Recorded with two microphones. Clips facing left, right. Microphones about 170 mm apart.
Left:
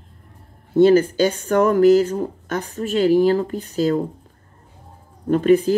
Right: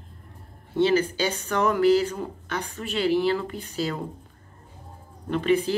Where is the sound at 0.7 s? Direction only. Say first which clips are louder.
Left 8 dB; 50° left (ahead or behind).